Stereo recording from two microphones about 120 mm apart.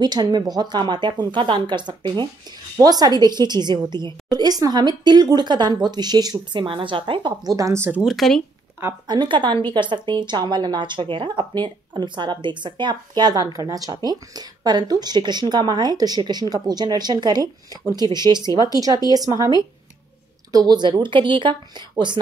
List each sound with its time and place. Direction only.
0.0 s speech: 35° right (ahead or behind); by 8.0 s 20° right (ahead or behind)
8.0 s speech: centre (ahead or behind)
9.0 s speech: 35° right (ahead or behind)
20.5 s speech: 35° right (ahead or behind)